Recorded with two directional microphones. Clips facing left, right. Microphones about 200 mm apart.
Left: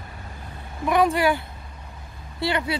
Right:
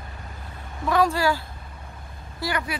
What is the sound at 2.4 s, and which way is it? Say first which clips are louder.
Speech: left 3 dB; 25° left (ahead or behind).